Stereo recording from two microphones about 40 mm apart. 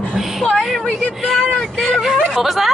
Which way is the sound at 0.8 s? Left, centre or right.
Left.